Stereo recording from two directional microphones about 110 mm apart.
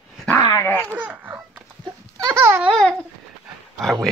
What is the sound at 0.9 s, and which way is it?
Laughter, 15° right (ahead or behind).